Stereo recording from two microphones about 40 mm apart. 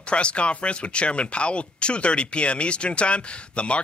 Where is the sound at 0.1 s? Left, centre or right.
Left.